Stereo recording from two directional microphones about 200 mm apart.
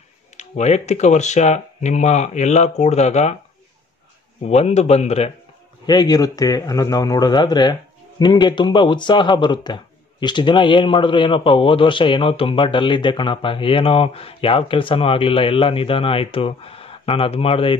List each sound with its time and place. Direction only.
0.4 s speech: 35° left (ahead or behind)
4.5 s speech: 30° left (ahead or behind)
5.9 s a man's voice: 20° left (ahead or behind)